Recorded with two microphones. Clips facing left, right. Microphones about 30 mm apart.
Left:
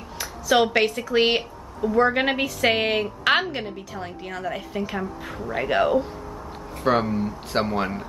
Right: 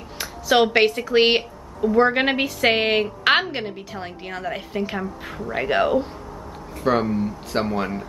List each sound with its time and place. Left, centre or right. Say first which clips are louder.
0.2 s a sound: right 2 dB; right
0.7 s a woman's voice: right 3 dB; centre
6.8 s speech: right 1 dB; centre